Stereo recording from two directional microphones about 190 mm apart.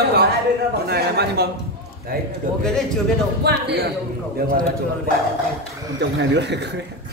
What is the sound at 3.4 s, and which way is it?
Speech, 60° right (ahead or behind).